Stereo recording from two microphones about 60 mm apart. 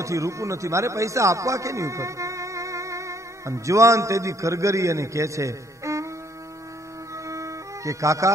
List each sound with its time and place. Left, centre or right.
0.0 s speech: right
7.2 s music: right